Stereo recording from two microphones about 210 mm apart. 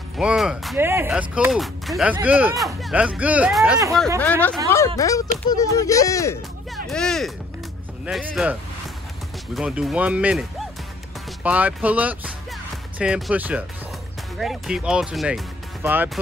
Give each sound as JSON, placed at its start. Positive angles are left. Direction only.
{"t": 0.2, "sound": "speech", "side_deg": -5}
{"t": 0.7, "sound": "speech", "side_deg": -10}
{"t": 4.2, "sound": "speech", "side_deg": 10}
{"t": 6.7, "sound": "speech", "side_deg": 5}
{"t": 11.4, "sound": "speech", "side_deg": -5}